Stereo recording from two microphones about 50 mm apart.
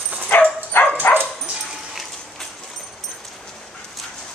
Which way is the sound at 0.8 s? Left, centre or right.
Left.